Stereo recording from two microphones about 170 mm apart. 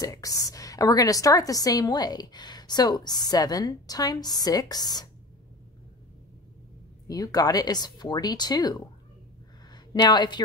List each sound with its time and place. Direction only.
0.0 s a woman's voice: 20° left (ahead or behind)
7.1 s a woman's voice: 20° left (ahead or behind)
9.7 s a sound: 25° left (ahead or behind)